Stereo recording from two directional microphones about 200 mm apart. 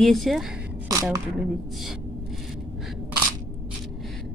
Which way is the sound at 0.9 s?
15° right (ahead or behind).